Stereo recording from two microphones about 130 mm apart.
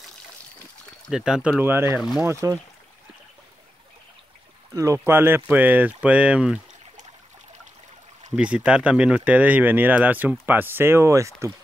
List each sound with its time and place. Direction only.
1.1 s speech: 5° right (ahead or behind)
1.6 s speech: 15° right (ahead or behind)
4.7 s speech: 20° right (ahead or behind); by 6.6 s 5° right (ahead or behind)
8.4 s speech: 10° right (ahead or behind)